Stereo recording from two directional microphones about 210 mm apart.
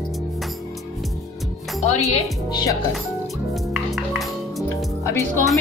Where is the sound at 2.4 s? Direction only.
20° left (ahead or behind).